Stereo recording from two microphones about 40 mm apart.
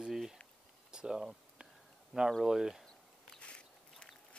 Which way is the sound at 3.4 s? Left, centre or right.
Left.